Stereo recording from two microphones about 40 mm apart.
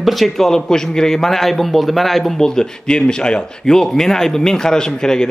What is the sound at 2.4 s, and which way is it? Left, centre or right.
Speech, centre.